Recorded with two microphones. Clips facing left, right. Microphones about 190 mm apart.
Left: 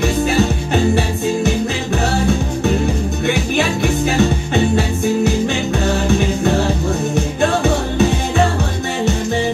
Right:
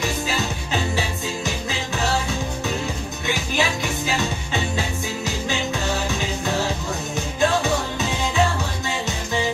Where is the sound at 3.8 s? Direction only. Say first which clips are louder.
Left 9 dB; 55° left (ahead or behind).